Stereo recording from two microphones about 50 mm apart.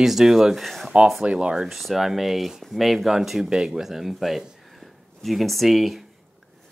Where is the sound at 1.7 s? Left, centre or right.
Centre.